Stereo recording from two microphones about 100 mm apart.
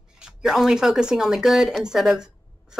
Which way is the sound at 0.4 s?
5° right (ahead or behind).